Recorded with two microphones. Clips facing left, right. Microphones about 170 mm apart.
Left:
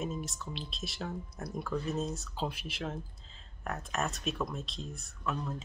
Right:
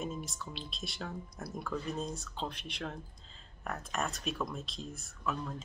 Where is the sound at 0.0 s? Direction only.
Centre (ahead or behind).